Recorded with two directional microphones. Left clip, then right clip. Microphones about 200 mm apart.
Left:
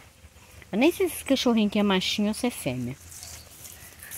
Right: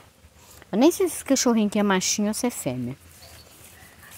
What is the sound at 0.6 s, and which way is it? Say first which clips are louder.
Speech: right 3 dB; 25° right (ahead or behind).